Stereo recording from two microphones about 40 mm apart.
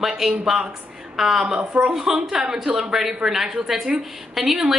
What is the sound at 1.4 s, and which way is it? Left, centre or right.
Speech, right.